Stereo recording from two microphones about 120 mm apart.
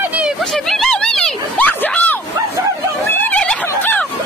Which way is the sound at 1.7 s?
15° left (ahead or behind).